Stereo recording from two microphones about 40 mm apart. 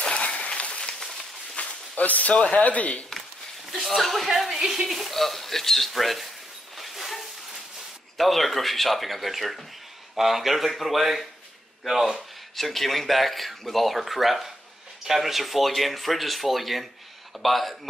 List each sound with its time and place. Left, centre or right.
0.0 s applause: left
1.6 s a sound: left
2.3 s speech: left
3.8 s speech: centre
6.8 s a sound: centre
8.2 s speech: centre